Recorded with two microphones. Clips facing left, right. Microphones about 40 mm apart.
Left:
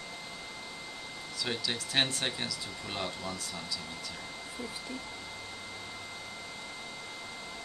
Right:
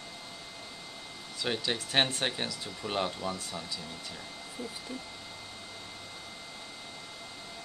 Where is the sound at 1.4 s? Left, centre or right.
Centre.